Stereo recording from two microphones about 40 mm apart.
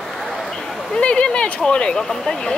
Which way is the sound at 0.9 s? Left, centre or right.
Left.